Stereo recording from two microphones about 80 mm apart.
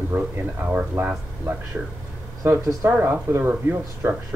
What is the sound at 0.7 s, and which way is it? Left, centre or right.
Speech, centre.